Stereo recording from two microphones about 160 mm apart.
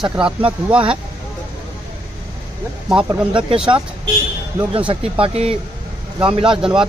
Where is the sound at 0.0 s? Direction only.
5° right (ahead or behind).